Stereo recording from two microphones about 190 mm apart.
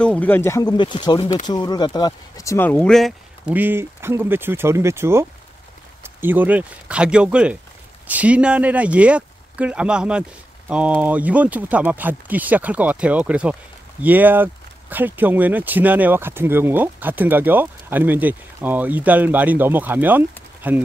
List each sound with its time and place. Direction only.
0.0 s speech: 5° left (ahead or behind); by 20.8 s 10° right (ahead or behind)